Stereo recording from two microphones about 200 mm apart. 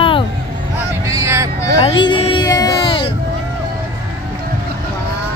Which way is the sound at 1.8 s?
25° left (ahead or behind).